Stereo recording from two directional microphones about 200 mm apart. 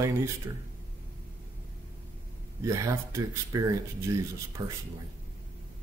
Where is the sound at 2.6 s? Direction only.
15° right (ahead or behind).